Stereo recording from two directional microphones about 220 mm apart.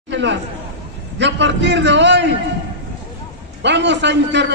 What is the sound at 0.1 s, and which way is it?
Chatter, 55° right (ahead or behind).